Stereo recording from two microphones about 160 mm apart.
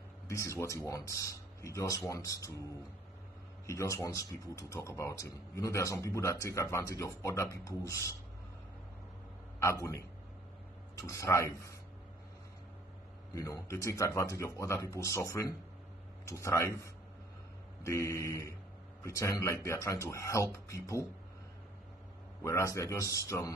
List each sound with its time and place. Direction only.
0.3 s speech: 20° left (ahead or behind)
3.6 s speech: 20° left (ahead or behind)
9.6 s speech: 20° left (ahead or behind)
13.3 s speech: 20° left (ahead or behind)
22.4 s speech: 20° left (ahead or behind)